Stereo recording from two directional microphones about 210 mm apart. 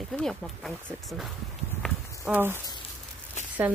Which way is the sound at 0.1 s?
5° left (ahead or behind).